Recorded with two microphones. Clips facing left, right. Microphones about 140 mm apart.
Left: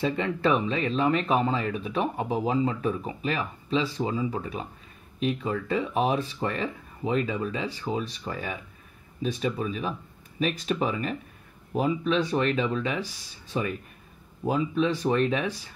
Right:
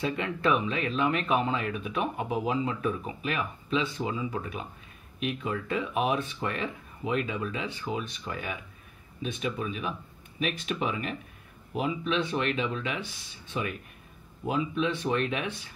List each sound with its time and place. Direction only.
0.0 s speech: 30° left (ahead or behind)